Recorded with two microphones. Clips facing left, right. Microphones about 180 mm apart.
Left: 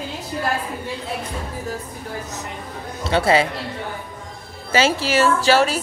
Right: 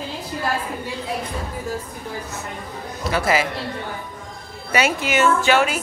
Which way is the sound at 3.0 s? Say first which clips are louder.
Left 3 dB; 30° left (ahead or behind).